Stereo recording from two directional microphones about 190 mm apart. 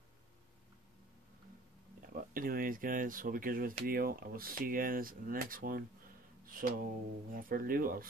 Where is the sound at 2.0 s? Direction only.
50° right (ahead or behind).